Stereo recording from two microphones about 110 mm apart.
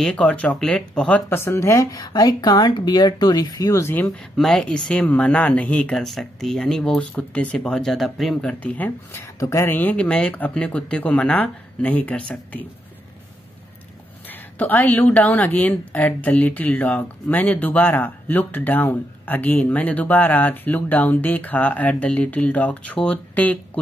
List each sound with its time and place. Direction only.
0.0 s a woman's voice: 10° left (ahead or behind)
1.3 s speech: 25° left (ahead or behind)
4.4 s a woman's voice: 5° left (ahead or behind)
9.2 s speech: 30° left (ahead or behind)
9.7 s a woman's voice: 15° left (ahead or behind)
14.3 s a woman's voice: 15° left (ahead or behind)